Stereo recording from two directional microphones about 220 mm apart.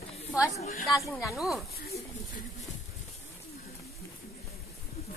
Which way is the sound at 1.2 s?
Centre (ahead or behind).